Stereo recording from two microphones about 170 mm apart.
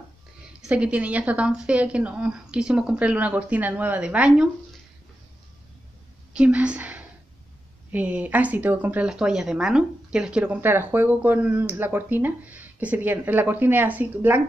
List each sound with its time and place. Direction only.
0.5 s speech: 5° right (ahead or behind)
6.3 s a woman's voice: 5° right (ahead or behind)